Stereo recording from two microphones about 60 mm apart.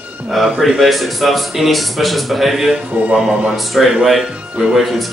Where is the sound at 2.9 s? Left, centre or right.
Right.